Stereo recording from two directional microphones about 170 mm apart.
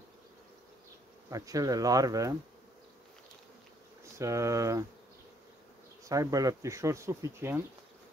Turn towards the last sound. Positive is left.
turn(degrees=-15)  # may be behind; listen again after turning